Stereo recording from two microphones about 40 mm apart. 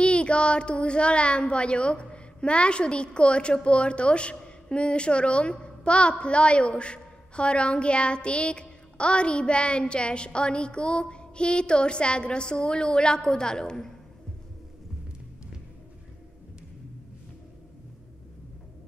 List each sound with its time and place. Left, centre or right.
0.0 s a woman's voice: left